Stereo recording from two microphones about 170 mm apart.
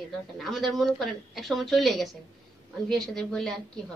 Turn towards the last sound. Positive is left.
turn(degrees=5)  # may be behind; listen again after turning